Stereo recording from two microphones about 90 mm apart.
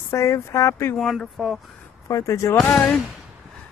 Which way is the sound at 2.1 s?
35° left (ahead or behind).